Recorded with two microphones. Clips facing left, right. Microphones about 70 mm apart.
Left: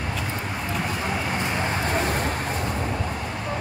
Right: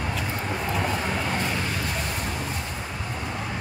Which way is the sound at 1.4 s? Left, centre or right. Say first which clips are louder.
Left 2 dB; left.